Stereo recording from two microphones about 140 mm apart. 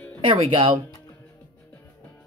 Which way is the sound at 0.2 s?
40° right (ahead or behind).